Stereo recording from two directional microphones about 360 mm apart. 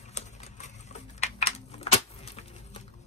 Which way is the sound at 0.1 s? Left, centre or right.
Centre.